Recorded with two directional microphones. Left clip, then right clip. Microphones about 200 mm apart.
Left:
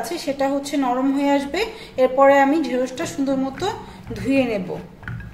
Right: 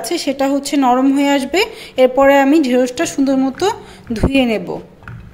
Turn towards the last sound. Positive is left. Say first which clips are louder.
# right 5 dB
turn(degrees=-45)  # may be behind; listen again after turning